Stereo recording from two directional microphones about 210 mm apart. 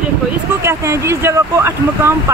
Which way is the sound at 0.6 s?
15° right (ahead or behind).